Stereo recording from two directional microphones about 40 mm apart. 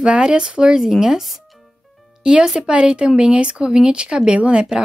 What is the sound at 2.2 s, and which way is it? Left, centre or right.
A woman's voice, right.